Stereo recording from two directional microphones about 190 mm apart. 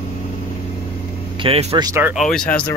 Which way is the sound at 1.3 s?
30° right (ahead or behind).